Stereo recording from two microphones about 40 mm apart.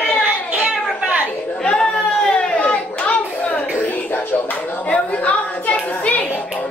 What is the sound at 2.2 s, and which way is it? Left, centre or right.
Hands, left.